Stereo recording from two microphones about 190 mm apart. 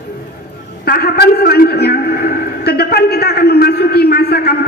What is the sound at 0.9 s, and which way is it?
A man's voice, 55° left (ahead or behind).